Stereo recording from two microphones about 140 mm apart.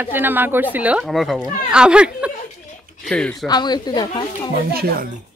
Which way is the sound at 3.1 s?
5° left (ahead or behind).